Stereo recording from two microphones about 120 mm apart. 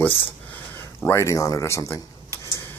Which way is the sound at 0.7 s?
20° left (ahead or behind).